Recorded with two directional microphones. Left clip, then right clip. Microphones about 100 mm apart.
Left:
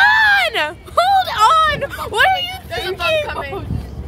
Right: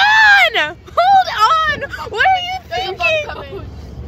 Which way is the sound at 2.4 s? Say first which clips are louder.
Right 3 dB; centre (ahead or behind).